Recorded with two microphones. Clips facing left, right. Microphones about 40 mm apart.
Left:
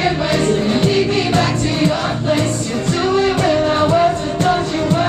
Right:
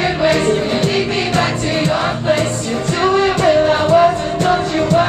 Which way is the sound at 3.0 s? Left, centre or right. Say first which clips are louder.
Right 3 dB; centre.